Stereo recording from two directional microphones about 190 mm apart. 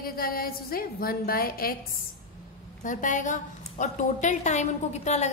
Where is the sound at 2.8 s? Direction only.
40° left (ahead or behind).